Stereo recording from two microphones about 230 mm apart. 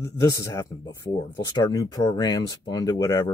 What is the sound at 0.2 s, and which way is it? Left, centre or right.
Speech, centre.